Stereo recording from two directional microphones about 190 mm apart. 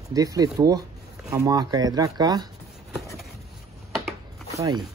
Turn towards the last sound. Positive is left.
turn(degrees=-20)  # may be behind; listen again after turning